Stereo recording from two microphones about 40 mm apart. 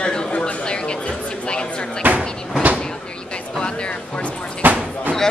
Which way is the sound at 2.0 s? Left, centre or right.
Right.